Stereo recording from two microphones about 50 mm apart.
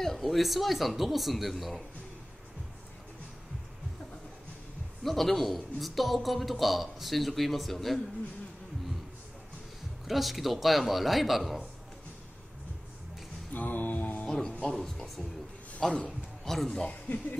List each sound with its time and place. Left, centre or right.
0.0 s a man's voice: centre
5.0 s a man's voice: centre
10.0 s a man's voice: centre
13.5 s a sound: left
14.2 s music: centre
14.5 s a man's voice: centre
17.1 s speech: left